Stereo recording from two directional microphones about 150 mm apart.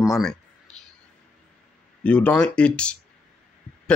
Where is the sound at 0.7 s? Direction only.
5° left (ahead or behind).